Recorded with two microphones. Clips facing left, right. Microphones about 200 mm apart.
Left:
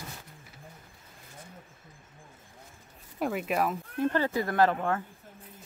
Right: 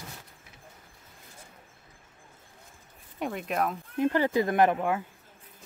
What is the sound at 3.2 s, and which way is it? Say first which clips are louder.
Speech: left 1 dB; 5° left (ahead or behind).